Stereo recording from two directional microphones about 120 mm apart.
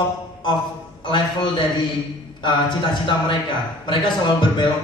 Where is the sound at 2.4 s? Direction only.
40° left (ahead or behind).